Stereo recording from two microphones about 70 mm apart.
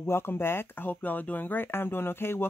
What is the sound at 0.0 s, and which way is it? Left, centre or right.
Speech, left.